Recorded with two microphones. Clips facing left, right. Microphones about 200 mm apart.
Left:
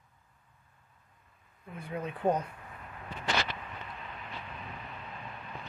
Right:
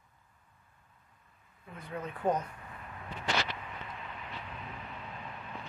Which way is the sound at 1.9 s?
10° left (ahead or behind).